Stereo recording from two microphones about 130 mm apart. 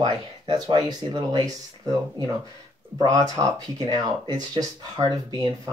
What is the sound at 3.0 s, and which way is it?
Speech, 25° right (ahead or behind).